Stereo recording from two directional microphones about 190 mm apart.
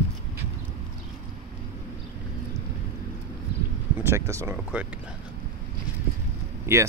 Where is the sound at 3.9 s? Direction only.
15° right (ahead or behind).